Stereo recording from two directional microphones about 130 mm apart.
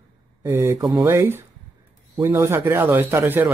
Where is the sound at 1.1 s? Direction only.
20° right (ahead or behind).